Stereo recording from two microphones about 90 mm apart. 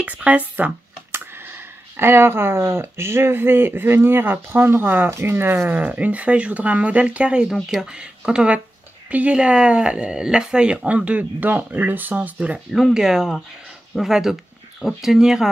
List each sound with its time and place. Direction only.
0.0 s speech: 15° right (ahead or behind)